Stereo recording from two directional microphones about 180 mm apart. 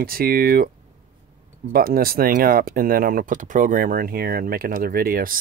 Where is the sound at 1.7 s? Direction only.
55° right (ahead or behind).